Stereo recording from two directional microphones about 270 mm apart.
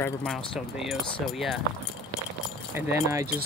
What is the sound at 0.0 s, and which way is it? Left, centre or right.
Speech, centre.